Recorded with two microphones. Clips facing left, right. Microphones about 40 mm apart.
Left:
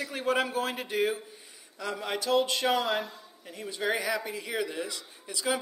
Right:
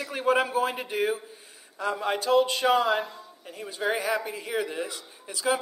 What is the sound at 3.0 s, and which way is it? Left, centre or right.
A woman's voice, centre.